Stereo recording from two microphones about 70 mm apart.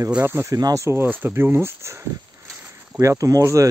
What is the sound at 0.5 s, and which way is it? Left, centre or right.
Speech, right.